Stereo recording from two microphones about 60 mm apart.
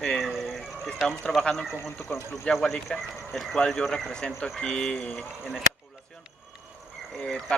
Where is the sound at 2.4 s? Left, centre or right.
Centre.